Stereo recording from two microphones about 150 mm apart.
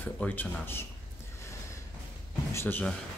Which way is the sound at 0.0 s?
10° left (ahead or behind).